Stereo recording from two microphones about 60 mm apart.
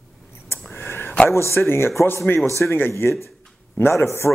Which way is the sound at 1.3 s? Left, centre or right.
Left.